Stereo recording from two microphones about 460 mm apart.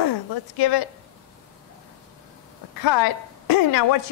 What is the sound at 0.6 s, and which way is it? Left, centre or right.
Speech, left.